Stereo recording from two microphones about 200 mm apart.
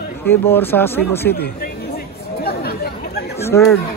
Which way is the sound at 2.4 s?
50° left (ahead or behind).